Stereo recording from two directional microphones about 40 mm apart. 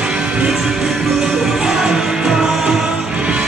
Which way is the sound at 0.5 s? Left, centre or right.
Centre.